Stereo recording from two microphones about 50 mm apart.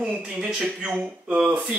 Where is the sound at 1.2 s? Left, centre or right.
Centre.